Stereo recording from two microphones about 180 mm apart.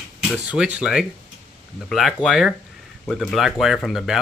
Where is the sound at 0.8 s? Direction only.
5° right (ahead or behind).